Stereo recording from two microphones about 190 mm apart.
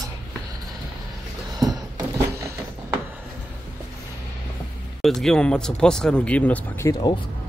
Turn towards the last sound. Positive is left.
turn(degrees=15)  # may be behind; listen again after turning